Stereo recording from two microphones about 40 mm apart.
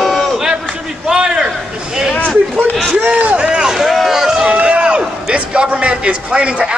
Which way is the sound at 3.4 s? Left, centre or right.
Right.